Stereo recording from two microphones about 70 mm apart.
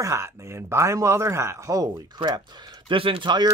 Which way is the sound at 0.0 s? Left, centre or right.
Right.